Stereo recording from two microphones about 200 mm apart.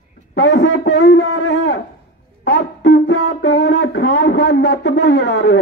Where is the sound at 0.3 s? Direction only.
60° left (ahead or behind).